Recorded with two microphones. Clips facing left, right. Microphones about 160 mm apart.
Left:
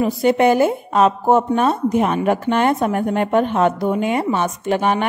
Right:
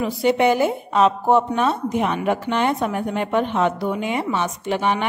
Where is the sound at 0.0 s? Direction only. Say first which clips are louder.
Left 3 dB; 45° left (ahead or behind).